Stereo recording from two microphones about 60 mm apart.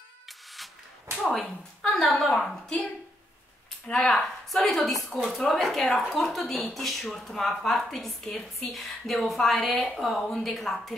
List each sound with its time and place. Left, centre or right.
1.4 s speech: centre
2.0 s speech: centre
3.8 s speech: centre